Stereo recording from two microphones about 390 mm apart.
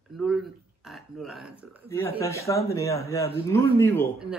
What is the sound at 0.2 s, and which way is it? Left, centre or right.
Speech, centre.